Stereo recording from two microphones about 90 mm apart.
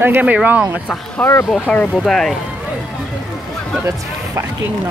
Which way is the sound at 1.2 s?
15° left (ahead or behind).